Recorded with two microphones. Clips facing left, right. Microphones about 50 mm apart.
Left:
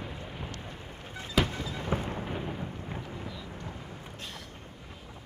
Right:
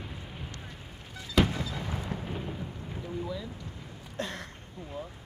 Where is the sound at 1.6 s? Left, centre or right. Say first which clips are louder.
Left 3 dB; left.